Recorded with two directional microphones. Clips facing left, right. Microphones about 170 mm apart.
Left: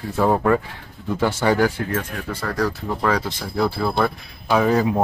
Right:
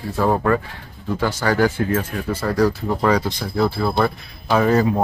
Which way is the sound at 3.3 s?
10° left (ahead or behind).